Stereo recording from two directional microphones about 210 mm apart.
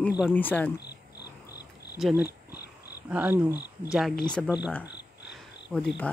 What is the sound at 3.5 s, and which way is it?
Speech, 50° left (ahead or behind).